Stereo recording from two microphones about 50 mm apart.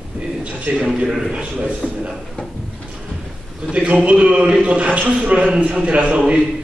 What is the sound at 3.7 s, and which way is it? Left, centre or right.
A man's voice, right.